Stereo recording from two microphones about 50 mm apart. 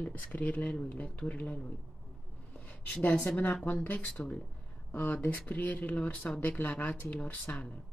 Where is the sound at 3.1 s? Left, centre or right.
Left.